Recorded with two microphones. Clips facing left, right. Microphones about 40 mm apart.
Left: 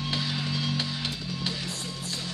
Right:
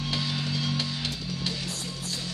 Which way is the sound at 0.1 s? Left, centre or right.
Centre.